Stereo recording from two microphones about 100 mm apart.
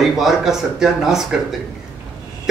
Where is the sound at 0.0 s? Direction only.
5° right (ahead or behind).